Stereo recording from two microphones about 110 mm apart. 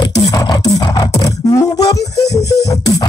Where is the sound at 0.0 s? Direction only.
35° left (ahead or behind).